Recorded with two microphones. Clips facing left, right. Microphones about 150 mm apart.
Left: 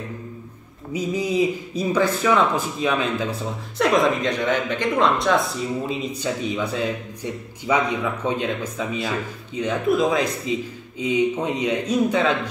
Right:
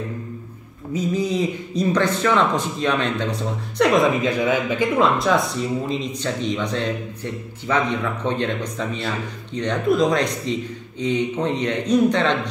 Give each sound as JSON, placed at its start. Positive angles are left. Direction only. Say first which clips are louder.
{"t": 0.9, "sound": "a man's voice", "louder": "even", "side_deg": 10}